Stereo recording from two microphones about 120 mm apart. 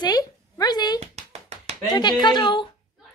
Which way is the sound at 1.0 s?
65° right (ahead or behind).